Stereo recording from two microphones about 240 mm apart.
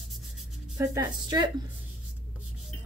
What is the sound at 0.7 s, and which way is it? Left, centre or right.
Speech, centre.